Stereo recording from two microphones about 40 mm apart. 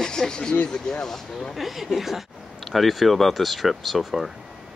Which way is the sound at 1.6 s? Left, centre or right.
Centre.